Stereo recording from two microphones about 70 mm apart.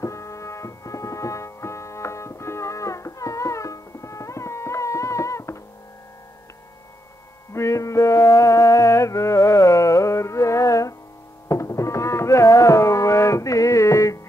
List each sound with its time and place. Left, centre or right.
0.0 s music: left
7.5 s music: left